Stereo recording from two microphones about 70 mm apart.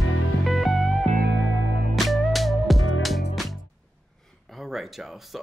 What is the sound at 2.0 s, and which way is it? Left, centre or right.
Music, centre.